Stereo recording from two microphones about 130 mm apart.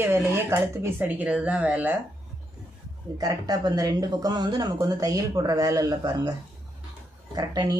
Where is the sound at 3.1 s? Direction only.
30° right (ahead or behind).